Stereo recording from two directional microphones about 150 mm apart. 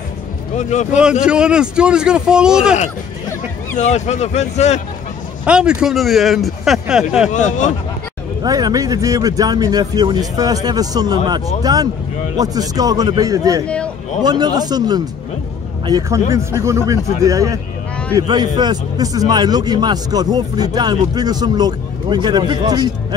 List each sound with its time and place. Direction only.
0.6 s speech: 50° left (ahead or behind)
1.2 s a man's voice: 5° right (ahead or behind)
3.7 s speech: 50° left (ahead or behind)
5.4 s a man's voice: 5° right (ahead or behind)
7.2 s speech: 55° left (ahead or behind)
8.5 s a man's voice: 25° right (ahead or behind)